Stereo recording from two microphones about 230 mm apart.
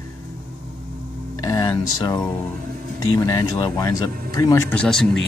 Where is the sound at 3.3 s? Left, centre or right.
Centre.